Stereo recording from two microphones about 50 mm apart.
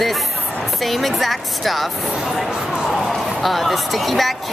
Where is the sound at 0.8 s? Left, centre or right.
Centre.